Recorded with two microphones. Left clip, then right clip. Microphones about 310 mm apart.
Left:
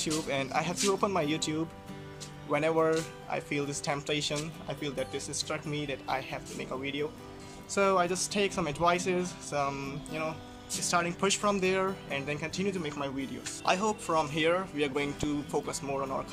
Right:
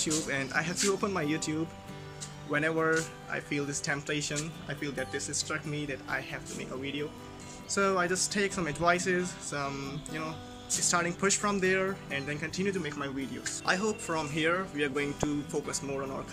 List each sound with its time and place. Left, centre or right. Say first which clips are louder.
0.0 s speech: even; centre